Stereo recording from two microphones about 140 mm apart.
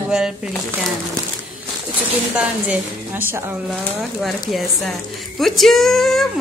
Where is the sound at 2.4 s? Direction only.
10° right (ahead or behind).